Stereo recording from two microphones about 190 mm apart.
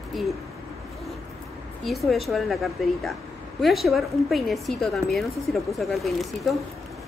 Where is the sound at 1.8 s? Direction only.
Centre (ahead or behind).